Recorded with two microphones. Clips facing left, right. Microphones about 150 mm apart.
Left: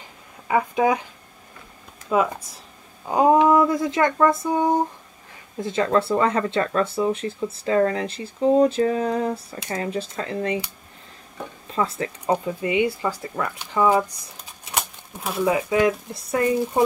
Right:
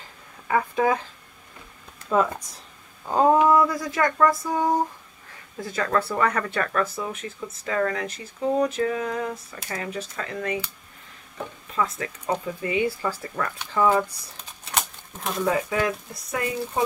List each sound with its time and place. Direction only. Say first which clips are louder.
0.5 s speech: left 2 dB; 15° left (ahead or behind)
2.0 s speech: left 1 dB; 10° left (ahead or behind); by 10.6 s 30° left (ahead or behind)
11.7 s speech: left 3 dB; 30° left (ahead or behind)
12.4 s speech: left 3 dB; 20° left (ahead or behind)
15.2 s speech: left 2 dB; 10° left (ahead or behind)
15.7 s speech: left 6 dB; 20° left (ahead or behind)